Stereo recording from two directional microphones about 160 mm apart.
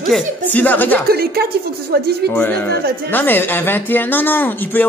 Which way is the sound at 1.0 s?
75° right (ahead or behind).